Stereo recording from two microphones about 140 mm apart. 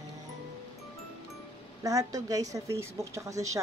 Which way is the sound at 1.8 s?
25° right (ahead or behind).